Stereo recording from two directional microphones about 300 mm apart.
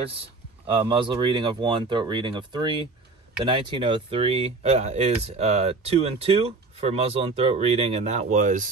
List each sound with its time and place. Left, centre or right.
0.7 s speech: centre